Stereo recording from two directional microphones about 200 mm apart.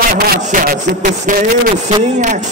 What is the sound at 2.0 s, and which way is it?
Speech, 35° right (ahead or behind).